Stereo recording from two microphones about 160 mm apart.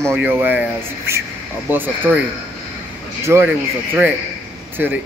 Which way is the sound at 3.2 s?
15° right (ahead or behind).